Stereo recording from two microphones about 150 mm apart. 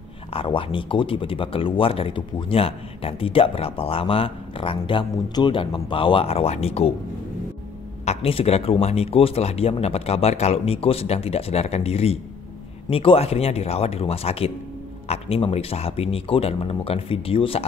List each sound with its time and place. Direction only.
0.3 s speech: 35° left (ahead or behind)
8.0 s a man's voice: 45° left (ahead or behind)